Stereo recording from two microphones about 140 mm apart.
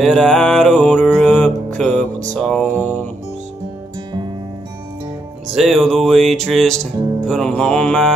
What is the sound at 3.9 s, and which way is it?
Music, 30° right (ahead or behind).